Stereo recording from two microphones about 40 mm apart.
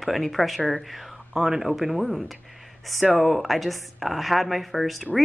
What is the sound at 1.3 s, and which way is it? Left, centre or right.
Speech, centre.